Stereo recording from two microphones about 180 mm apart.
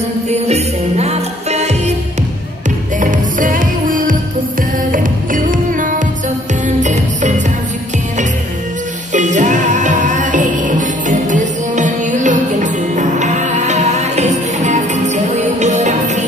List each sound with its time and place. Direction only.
0.3 s music: 35° right (ahead or behind)
3.0 s music: 45° right (ahead or behind)
9.1 s music: 40° right (ahead or behind)